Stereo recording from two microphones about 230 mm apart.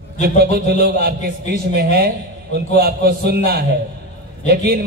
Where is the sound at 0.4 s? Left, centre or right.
Right.